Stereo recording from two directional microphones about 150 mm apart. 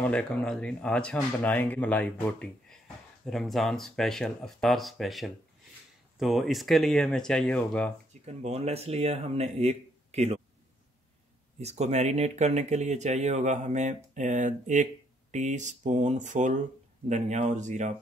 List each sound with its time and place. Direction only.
0.0 s speech: 10° left (ahead or behind)
8.1 s speech: 45° right (ahead or behind)
11.6 s speech: 50° right (ahead or behind)